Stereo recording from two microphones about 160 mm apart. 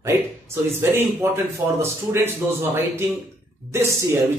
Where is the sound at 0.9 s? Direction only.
15° right (ahead or behind).